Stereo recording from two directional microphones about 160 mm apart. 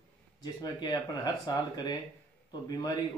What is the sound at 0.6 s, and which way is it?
Speech, 25° left (ahead or behind).